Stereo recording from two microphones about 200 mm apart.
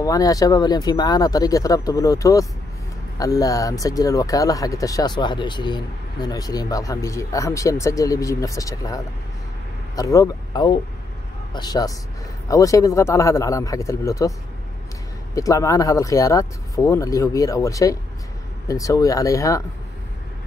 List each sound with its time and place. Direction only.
0.0 s a man's voice: 15° left (ahead or behind)
15.3 s speech: 15° left (ahead or behind)